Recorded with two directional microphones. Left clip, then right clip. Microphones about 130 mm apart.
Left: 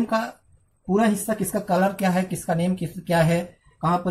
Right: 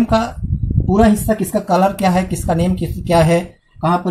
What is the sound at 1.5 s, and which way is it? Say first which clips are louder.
Speech: right 7 dB; 35° right (ahead or behind).